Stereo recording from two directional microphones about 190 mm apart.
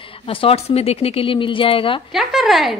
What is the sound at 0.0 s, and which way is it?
A woman's voice, 30° left (ahead or behind).